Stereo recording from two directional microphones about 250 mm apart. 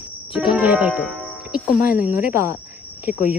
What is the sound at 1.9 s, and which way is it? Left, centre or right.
Speech, centre.